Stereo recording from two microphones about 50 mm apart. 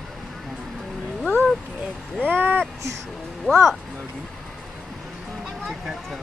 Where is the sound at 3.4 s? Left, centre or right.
Centre.